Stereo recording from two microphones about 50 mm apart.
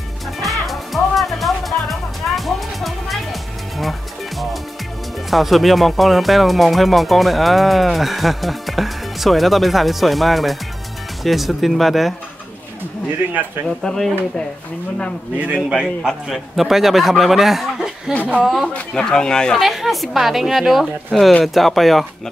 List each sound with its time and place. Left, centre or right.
0.4 s music: centre
5.3 s speech: centre
13.7 s speech: centre
15.3 s a man's voice: right
16.0 s speech: centre
18.7 s speech: left
19.0 s speech: centre
19.6 s speech: centre